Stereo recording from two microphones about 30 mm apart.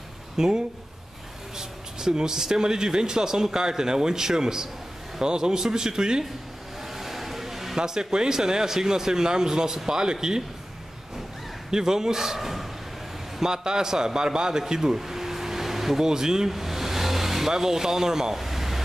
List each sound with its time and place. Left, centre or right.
0.4 s speech: centre
1.6 s speech: centre
6.8 s vehicle: centre
7.7 s speech: right
11.7 s a man's voice: centre
13.4 s speech: right
14.6 s speech: centre
15.0 s a sound: centre
16.0 s speech: centre
16.4 s vehicle: centre
18.3 s a sound: centre